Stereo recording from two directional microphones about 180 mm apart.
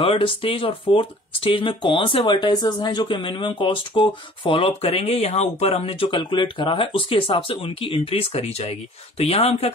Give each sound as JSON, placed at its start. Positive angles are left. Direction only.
{"t": 0.0, "sound": "speech", "side_deg": 30}